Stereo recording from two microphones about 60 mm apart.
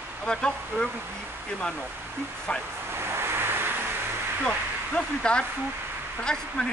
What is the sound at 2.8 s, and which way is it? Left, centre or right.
Vehicle, right.